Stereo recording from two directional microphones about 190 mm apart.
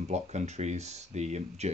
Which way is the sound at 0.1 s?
35° right (ahead or behind).